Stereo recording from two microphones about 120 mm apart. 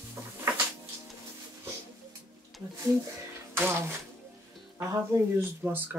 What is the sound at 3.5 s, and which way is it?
Speech, 20° right (ahead or behind).